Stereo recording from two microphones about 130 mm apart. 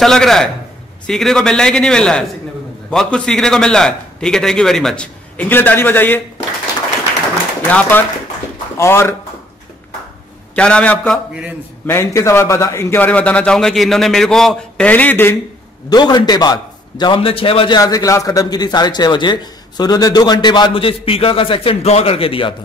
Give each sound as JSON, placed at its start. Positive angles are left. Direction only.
{"t": 0.0, "sound": "a man's voice", "side_deg": 5}
{"t": 7.6, "sound": "a man's voice", "side_deg": 15}
{"t": 10.5, "sound": "a man's voice", "side_deg": 10}
{"t": 15.9, "sound": "a man's voice", "side_deg": 35}
{"t": 17.7, "sound": "a man's voice", "side_deg": 30}